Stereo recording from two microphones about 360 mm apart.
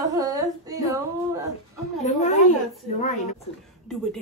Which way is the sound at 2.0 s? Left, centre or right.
Centre.